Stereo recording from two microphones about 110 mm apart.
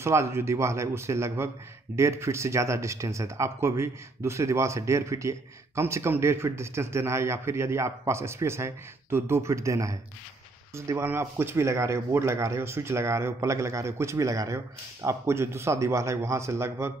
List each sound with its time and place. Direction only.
0.0 s speech: 25° right (ahead or behind)